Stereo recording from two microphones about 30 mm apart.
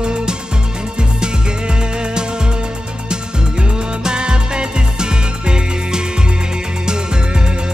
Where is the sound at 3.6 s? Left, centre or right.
Right.